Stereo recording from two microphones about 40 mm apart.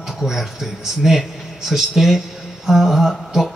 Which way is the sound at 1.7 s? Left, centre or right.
Centre.